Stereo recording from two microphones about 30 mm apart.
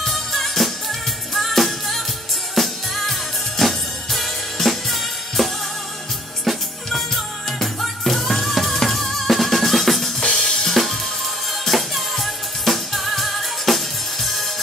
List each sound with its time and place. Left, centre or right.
0.0 s music: centre
9.3 s drum: centre
10.4 s drum kit: centre
10.7 s music: centre